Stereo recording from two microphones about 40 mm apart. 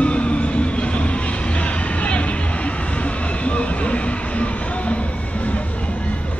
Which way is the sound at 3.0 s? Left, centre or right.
Left.